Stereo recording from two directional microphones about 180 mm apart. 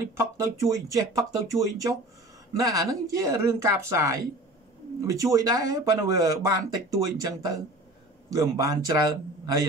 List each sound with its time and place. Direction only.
0.1 s speech: 15° right (ahead or behind)